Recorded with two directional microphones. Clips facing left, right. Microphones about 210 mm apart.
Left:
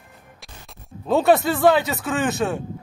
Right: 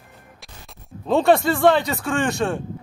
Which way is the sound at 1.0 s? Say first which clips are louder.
Even; 5° left (ahead or behind).